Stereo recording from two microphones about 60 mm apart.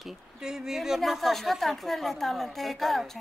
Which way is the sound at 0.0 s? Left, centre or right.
Centre.